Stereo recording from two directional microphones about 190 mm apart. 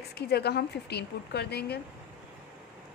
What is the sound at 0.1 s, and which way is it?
A woman's voice, 60° left (ahead or behind).